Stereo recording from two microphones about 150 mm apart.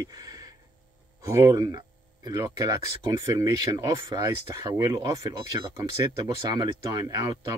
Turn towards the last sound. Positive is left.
turn(degrees=-25)  # may be behind; listen again after turning